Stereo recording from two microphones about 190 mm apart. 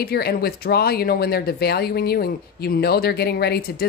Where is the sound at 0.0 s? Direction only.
55° left (ahead or behind).